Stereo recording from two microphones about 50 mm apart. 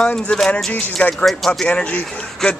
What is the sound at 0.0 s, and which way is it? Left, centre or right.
Speech, centre.